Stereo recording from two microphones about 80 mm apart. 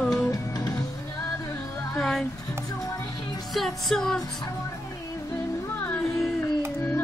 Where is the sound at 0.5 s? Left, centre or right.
Left.